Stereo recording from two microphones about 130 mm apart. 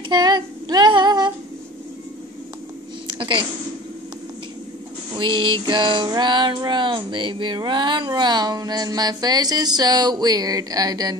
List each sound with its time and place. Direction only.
0.1 s female singing: 35° right (ahead or behind)
3.2 s a woman's voice: 35° right (ahead or behind)
5.1 s a sound: 40° right (ahead or behind)